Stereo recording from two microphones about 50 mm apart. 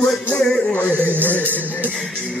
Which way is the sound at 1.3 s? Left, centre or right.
Left.